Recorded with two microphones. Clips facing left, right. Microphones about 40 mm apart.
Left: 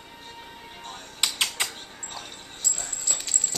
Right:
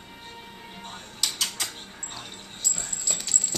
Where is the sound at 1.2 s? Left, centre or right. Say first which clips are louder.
Left 4 dB; left.